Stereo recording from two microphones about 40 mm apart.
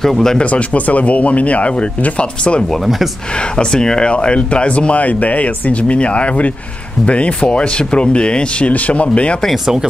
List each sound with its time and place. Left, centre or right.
0.0 s speech: centre
0.4 s speech: left
3.5 s speech: centre